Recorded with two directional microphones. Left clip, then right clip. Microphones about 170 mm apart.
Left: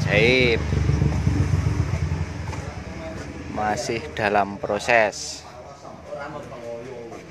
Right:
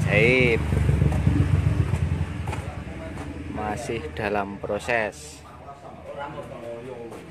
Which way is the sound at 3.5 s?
Centre (ahead or behind).